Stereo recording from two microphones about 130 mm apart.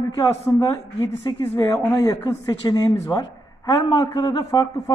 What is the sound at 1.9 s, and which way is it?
Speech, 25° left (ahead or behind).